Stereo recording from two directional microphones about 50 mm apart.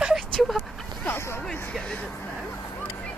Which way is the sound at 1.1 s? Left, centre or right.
Left.